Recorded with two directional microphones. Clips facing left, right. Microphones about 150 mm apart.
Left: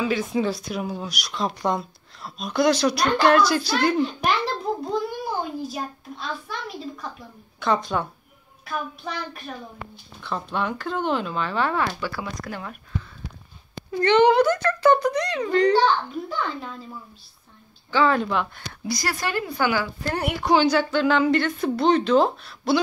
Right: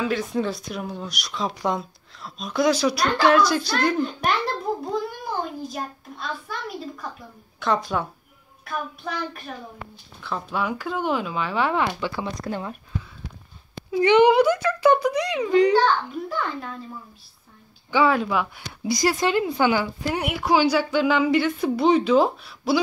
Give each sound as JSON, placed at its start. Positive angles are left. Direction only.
{"t": 0.0, "sound": "speech", "side_deg": 0}
{"t": 4.7, "sound": "a sound", "side_deg": -5}
{"t": 7.6, "sound": "a woman's voice", "side_deg": 0}
{"t": 13.9, "sound": "a woman's voice", "side_deg": -10}
{"t": 17.9, "sound": "speech", "side_deg": -10}
{"t": 18.9, "sound": "a woman's voice", "side_deg": -20}
{"t": 20.2, "sound": "a woman's voice", "side_deg": 0}